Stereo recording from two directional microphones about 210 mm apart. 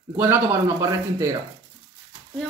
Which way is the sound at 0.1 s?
10° right (ahead or behind).